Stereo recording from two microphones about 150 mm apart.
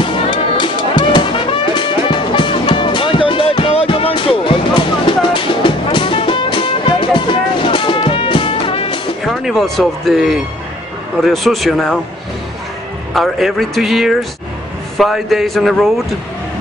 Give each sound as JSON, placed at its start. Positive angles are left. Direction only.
{"t": 0.0, "sound": "music", "side_deg": 30}
{"t": 9.2, "sound": "speech", "side_deg": 0}
{"t": 13.1, "sound": "speech", "side_deg": 0}